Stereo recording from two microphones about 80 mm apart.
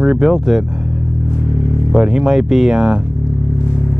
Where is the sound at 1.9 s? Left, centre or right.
Centre.